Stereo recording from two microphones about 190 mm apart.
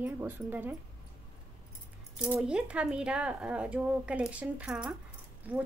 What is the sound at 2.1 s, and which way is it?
Speech, 5° right (ahead or behind).